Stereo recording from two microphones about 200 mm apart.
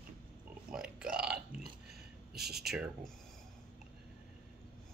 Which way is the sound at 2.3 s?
55° right (ahead or behind).